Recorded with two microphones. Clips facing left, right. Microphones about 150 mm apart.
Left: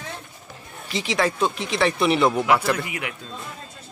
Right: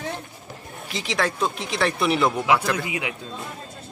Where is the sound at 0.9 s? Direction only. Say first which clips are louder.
Left 2 dB; centre (ahead or behind).